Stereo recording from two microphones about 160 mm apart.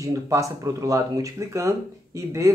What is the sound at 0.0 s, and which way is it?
A man's voice, 20° right (ahead or behind).